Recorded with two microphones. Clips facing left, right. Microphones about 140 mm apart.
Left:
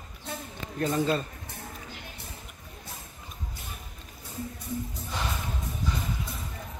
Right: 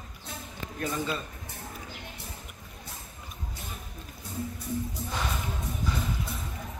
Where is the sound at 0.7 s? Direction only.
40° left (ahead or behind).